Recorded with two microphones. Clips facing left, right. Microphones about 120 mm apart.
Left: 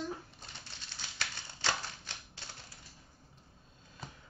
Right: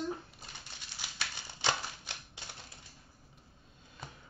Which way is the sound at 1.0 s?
15° right (ahead or behind).